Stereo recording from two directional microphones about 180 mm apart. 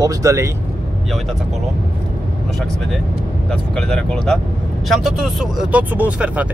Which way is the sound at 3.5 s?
5° left (ahead or behind).